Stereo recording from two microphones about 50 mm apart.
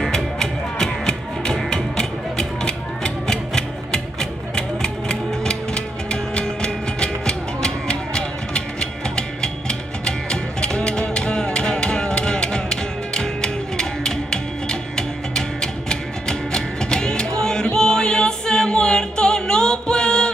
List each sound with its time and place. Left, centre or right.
0.0 s music: centre